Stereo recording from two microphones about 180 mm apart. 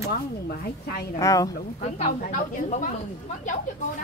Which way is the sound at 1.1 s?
20° left (ahead or behind).